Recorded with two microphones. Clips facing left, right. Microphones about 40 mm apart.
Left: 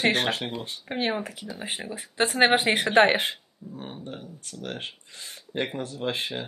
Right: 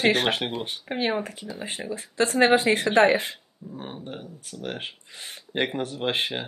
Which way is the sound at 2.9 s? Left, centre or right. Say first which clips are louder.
Left 1 dB; left.